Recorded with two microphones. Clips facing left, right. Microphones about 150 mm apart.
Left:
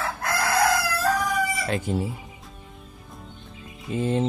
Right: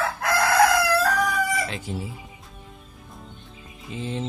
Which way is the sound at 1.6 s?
50° left (ahead or behind).